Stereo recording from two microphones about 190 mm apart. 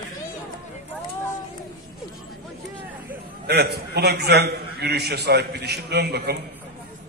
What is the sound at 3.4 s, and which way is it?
A man's voice, 60° right (ahead or behind).